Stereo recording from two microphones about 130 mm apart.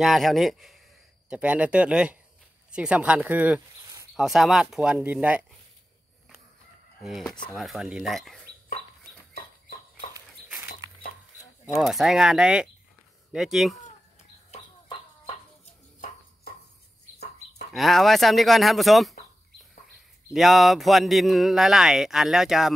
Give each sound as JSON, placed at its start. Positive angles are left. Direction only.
{"t": 0.0, "sound": "speech", "side_deg": 0}
{"t": 3.8, "sound": "a sound", "side_deg": -25}
{"t": 4.2, "sound": "speech", "side_deg": 0}
{"t": 7.0, "sound": "speech", "side_deg": 0}
{"t": 11.6, "sound": "speech", "side_deg": 0}
{"t": 14.5, "sound": "a sound", "side_deg": 60}
{"t": 17.7, "sound": "speech", "side_deg": 0}
{"t": 20.3, "sound": "speech", "side_deg": 0}